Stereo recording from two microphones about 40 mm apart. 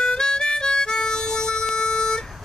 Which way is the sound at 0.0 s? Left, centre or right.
Centre.